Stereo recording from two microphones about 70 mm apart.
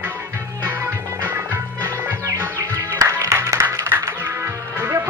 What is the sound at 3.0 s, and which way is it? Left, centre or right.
Music, right.